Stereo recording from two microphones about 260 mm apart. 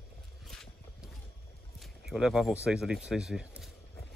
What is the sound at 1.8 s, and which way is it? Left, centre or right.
Speech, centre.